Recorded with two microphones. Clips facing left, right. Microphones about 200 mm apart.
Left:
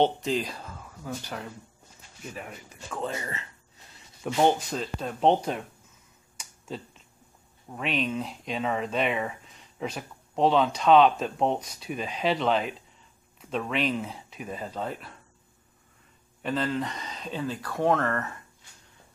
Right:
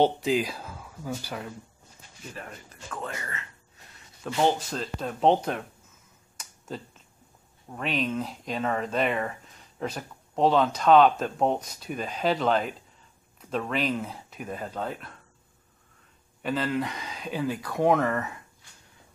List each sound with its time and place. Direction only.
0.0 s speech: 5° right (ahead or behind)
2.3 s speech: 10° left (ahead or behind)
3.0 s speech: 25° left (ahead or behind)
4.5 s speech: centre (ahead or behind)
7.7 s speech: centre (ahead or behind)
16.4 s speech: 5° right (ahead or behind)